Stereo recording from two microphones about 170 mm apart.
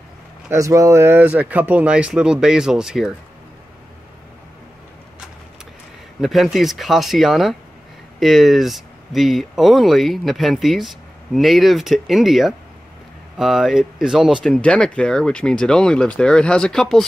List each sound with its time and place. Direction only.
0.5 s speech: 20° right (ahead or behind)
6.2 s speech: centre (ahead or behind)